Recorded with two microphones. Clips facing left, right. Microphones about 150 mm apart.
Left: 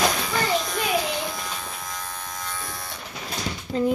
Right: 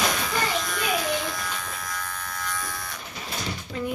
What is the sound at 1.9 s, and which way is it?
Electric shaver, 25° left (ahead or behind).